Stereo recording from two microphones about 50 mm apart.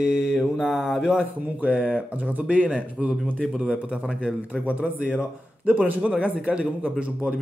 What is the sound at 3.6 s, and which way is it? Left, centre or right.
Speech, right.